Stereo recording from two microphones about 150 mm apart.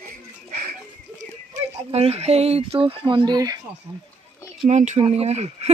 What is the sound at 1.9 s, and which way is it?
Speech, 45° right (ahead or behind).